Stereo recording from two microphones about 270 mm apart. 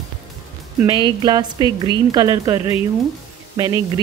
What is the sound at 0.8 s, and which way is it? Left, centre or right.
A woman's voice, centre.